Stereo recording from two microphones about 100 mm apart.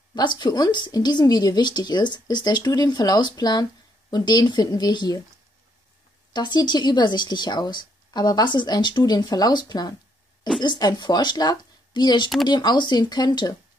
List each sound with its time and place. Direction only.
0.1 s speech: 50° left (ahead or behind)
6.3 s speech: 50° left (ahead or behind)